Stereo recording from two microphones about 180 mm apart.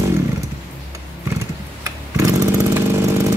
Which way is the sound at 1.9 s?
20° right (ahead or behind).